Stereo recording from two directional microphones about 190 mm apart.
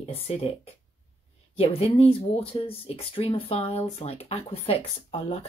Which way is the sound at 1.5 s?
30° left (ahead or behind).